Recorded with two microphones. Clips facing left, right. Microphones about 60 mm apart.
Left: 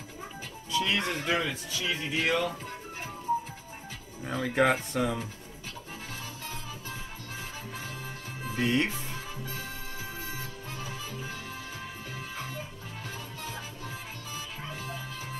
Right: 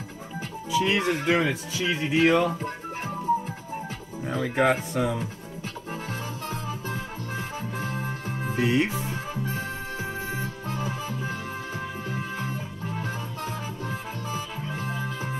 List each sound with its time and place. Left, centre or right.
0.7 s speech: centre; by 2.5 s right
4.2 s speech: centre
6.5 s music: right
8.5 s music: centre
9.0 s music: right